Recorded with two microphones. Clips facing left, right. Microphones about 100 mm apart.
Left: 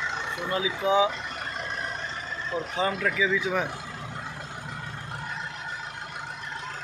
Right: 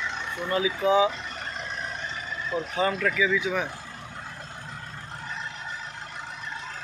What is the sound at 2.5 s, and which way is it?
Speech, 5° left (ahead or behind).